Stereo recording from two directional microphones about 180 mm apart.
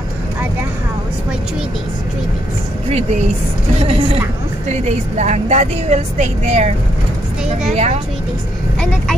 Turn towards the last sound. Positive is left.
turn(degrees=-40)  # may be behind; listen again after turning